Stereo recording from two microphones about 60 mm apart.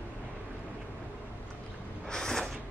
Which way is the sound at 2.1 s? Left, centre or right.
Centre.